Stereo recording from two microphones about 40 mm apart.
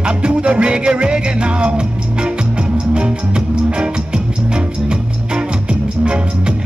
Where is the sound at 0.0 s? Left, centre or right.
Right.